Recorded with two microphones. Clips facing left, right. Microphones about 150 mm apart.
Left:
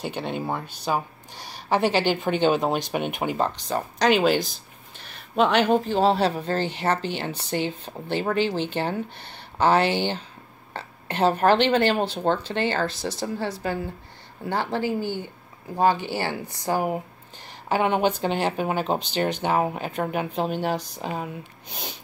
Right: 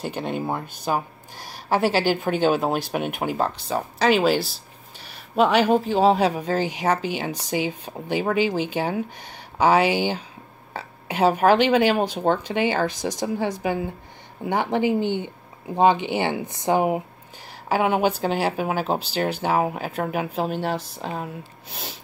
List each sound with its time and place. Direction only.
0.0 s speech: 5° right (ahead or behind); by 17.0 s 20° right (ahead or behind)
17.6 s speech: 5° right (ahead or behind)